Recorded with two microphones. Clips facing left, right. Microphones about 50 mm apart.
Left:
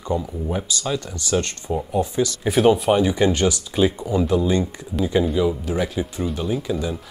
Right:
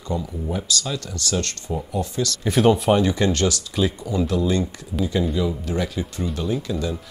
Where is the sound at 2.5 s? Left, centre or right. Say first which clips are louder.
Left 1 dB; centre.